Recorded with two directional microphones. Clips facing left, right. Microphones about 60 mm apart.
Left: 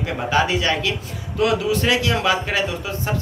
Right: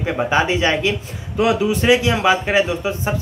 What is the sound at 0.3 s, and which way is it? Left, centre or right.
Speech, right.